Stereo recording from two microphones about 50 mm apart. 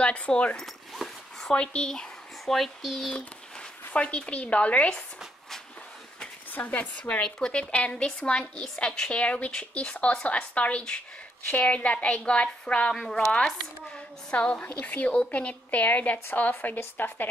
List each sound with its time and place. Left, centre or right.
0.0 s speech: left
0.9 s zipper: centre
1.5 s a woman's voice: centre
2.4 s speech: centre
3.9 s a woman's voice: left
6.5 s a woman's voice: left; by 9.2 s centre
9.2 s a woman's voice: left